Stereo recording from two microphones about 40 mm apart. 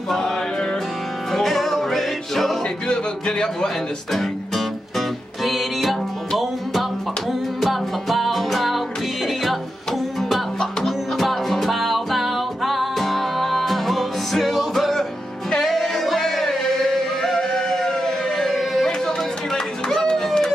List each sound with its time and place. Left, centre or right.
0.1 s music: centre
2.9 s music: centre
11.1 s music: centre
18.5 s a sound: centre
19.5 s music: centre
20.2 s a sound: centre